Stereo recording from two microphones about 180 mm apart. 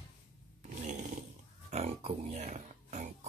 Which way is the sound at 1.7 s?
35° right (ahead or behind).